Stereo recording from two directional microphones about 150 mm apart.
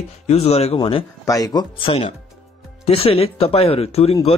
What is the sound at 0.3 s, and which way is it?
Speech, 45° left (ahead or behind).